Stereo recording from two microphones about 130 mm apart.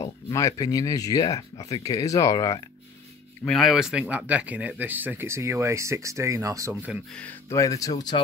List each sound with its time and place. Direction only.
0.0 s speech: 25° left (ahead or behind)
3.4 s speech: centre (ahead or behind); by 6.7 s 25° right (ahead or behind)
7.5 s speech: 25° left (ahead or behind)